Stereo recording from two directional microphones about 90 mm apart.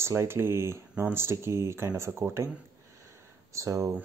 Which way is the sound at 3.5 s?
35° right (ahead or behind).